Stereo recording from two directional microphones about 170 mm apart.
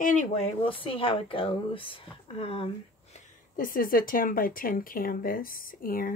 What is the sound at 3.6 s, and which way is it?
Speech, 55° left (ahead or behind).